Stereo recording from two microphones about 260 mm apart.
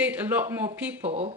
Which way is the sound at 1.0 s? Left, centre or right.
Right.